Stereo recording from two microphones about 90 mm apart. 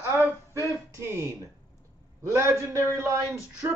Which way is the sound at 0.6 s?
30° right (ahead or behind).